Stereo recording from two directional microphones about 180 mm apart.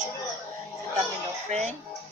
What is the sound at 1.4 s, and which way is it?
Speech, 40° right (ahead or behind).